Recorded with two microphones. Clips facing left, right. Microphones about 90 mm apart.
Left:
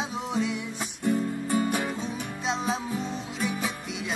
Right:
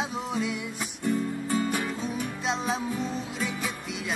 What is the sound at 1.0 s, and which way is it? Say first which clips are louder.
Music: left 1 dB; 20° left (ahead or behind).